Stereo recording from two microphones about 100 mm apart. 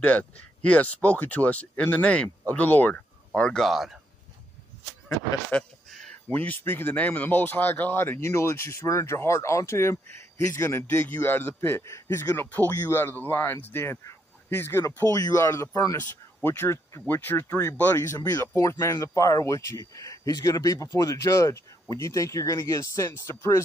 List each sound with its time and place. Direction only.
0.0 s speech: 15° left (ahead or behind)
5.0 s speech: 15° left (ahead or behind)
5.9 s a sound: 5° left (ahead or behind)
6.2 s a man's voice: 15° left (ahead or behind)